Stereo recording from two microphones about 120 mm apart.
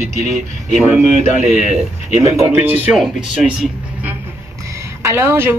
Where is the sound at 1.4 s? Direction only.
90° left.